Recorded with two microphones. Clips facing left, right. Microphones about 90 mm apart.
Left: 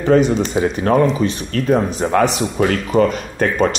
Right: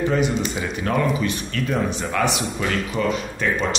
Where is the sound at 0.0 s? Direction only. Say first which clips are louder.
Left 7 dB; 35° left (ahead or behind).